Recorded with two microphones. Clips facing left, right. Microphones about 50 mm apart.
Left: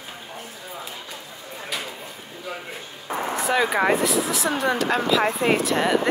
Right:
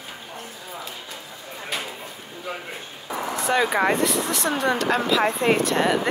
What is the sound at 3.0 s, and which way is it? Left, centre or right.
Vehicle, left.